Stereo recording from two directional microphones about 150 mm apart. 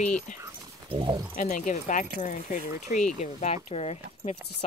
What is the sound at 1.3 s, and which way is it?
Speech, 60° left (ahead or behind).